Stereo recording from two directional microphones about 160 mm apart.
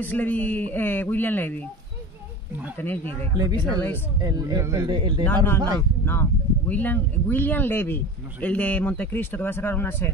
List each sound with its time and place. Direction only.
0.0 s speech: 10° left (ahead or behind)
2.8 s speech: 10° left (ahead or behind)
3.3 s speech: 25° right (ahead or behind)
5.2 s speech: 10° left (ahead or behind)